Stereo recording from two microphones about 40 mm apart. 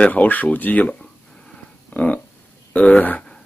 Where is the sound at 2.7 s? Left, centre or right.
Left.